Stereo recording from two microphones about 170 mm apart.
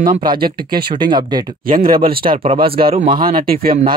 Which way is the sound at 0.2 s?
60° right (ahead or behind).